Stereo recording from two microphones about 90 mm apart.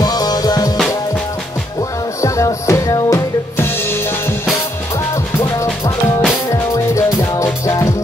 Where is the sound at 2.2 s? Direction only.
35° left (ahead or behind).